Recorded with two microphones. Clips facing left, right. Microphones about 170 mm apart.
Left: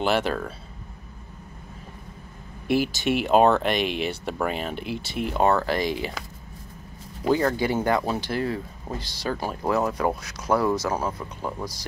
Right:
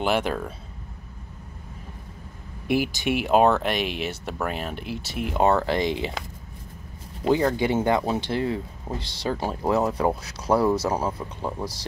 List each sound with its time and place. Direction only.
0.0 s speech: 10° right (ahead or behind)
2.7 s speech: 15° right (ahead or behind)
5.4 s speech: 25° right (ahead or behind)
7.2 s speech: 20° right (ahead or behind)